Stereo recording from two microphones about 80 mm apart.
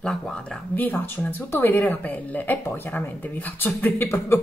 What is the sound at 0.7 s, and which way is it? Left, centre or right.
Speech, left.